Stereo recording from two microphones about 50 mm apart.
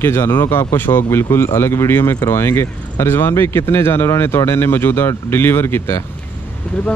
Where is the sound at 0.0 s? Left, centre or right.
Left.